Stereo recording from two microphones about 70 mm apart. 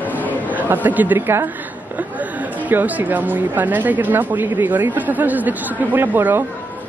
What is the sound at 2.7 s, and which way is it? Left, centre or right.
Speech, right.